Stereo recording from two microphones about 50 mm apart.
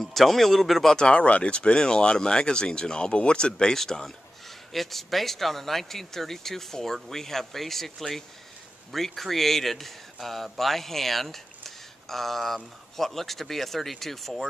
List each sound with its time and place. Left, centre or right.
0.0 s speech: centre
0.9 s speech: left; by 14.5 s centre